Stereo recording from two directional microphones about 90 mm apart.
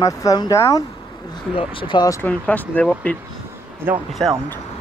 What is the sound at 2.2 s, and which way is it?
Speech, 15° left (ahead or behind).